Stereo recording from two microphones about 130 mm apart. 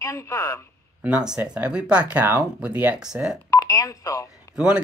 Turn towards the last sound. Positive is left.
turn(degrees=-10)  # may be behind; listen again after turning